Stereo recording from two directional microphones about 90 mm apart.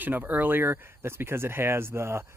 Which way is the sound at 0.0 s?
20° right (ahead or behind).